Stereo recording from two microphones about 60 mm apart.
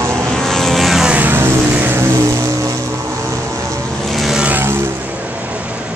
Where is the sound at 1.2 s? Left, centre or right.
Right.